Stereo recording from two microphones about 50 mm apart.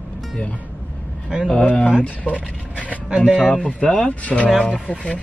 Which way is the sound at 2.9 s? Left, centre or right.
Right.